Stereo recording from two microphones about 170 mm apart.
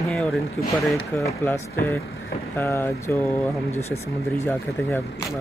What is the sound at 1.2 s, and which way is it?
Speech, 15° left (ahead or behind).